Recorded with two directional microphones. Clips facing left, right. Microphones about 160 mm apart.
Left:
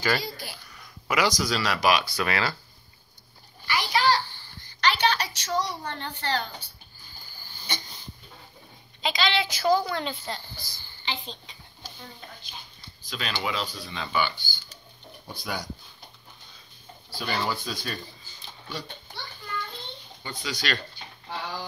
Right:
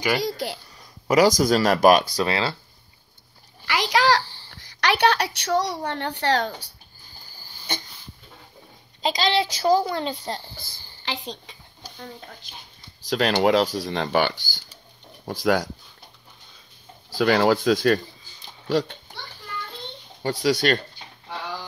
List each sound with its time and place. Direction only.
0.2 s speech: 70° right (ahead or behind)
0.7 s speech: 40° right (ahead or behind)
2.2 s speech: 25° right (ahead or behind)
3.6 s a sound: 90° right
4.2 s a sound: 30° right (ahead or behind)
4.5 s a woman's voice: 80° right
9.0 s speech: 40° right (ahead or behind)
13.0 s speech: 75° right (ahead or behind)
17.2 s speech: 90° right
20.2 s speech: 65° right (ahead or behind)